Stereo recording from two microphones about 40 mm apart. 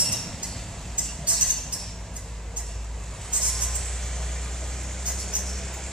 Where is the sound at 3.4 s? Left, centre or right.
Centre.